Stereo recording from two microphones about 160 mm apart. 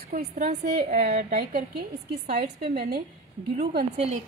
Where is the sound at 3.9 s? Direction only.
40° right (ahead or behind).